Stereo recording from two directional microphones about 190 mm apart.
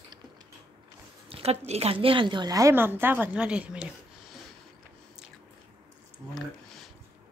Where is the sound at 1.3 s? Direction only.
30° right (ahead or behind); by 3.9 s 5° right (ahead or behind).